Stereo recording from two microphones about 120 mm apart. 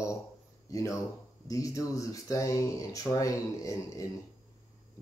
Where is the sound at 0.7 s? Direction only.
25° left (ahead or behind).